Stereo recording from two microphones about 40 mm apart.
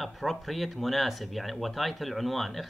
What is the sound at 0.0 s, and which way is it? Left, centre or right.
Speech, centre.